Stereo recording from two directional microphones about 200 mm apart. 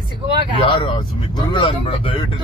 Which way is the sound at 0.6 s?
25° left (ahead or behind).